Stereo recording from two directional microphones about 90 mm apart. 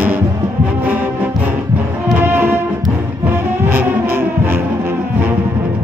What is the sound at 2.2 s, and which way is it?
Music, 25° right (ahead or behind).